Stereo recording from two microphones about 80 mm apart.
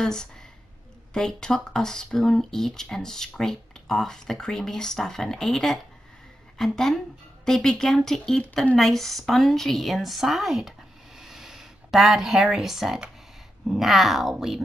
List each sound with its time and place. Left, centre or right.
0.0 s a woman's voice: centre
11.1 s a sound: centre
13.7 s a woman's voice: centre